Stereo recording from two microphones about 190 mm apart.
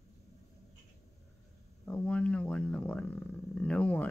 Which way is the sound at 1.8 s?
5° left (ahead or behind).